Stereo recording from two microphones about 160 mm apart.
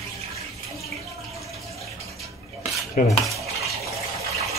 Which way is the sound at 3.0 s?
60° left (ahead or behind).